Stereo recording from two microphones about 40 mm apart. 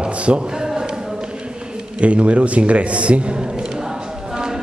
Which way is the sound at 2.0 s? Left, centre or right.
Right.